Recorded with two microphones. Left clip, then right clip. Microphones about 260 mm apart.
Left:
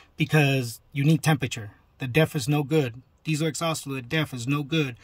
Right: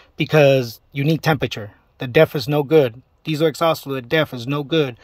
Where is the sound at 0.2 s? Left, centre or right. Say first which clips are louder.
Right 10 dB; centre.